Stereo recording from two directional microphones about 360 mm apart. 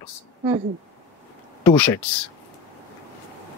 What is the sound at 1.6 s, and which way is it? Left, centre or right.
Speech, centre.